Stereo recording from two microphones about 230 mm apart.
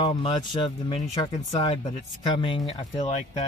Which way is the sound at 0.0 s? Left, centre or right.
Left.